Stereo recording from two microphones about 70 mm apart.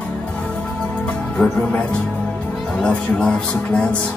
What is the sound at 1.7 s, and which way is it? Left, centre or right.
Speech, centre.